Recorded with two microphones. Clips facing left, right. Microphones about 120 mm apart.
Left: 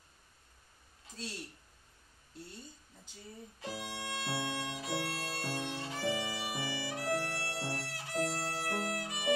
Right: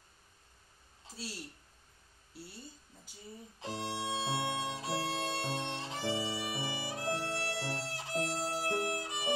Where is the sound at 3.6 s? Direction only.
25° right (ahead or behind).